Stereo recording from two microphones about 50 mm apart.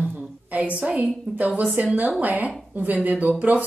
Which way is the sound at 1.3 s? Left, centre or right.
Right.